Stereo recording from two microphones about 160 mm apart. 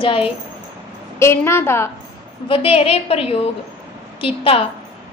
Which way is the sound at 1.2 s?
15° left (ahead or behind).